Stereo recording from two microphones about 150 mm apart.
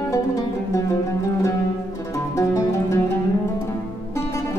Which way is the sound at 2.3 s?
20° left (ahead or behind).